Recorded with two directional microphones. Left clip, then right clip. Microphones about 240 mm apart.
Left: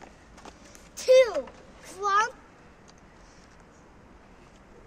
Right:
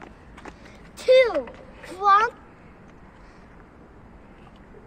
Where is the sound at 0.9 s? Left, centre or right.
Centre.